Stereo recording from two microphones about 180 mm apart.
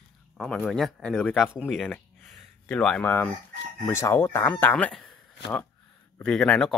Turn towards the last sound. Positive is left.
turn(degrees=5)  # may be behind; listen again after turning